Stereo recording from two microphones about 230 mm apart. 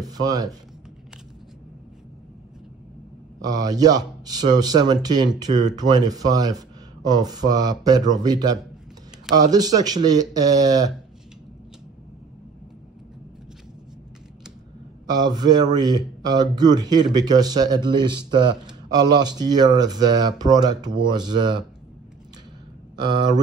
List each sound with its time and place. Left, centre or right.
0.0 s speech: centre
3.3 s a man's voice: centre
15.0 s a man's voice: centre